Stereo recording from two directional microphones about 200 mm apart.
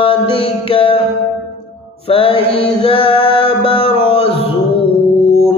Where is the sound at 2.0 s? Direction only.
25° left (ahead or behind).